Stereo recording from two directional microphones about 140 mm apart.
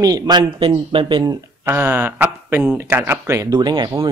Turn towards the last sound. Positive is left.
turn(degrees=-30)  # may be behind; listen again after turning